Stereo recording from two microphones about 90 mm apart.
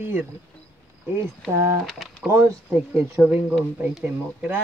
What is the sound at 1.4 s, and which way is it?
Speech, 5° left (ahead or behind).